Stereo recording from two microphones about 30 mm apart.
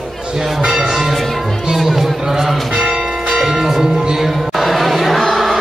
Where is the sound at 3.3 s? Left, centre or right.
Centre.